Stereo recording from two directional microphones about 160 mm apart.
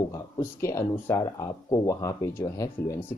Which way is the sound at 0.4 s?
15° left (ahead or behind).